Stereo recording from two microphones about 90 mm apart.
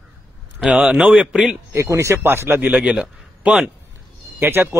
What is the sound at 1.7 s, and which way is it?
A man's voice, 35° right (ahead or behind).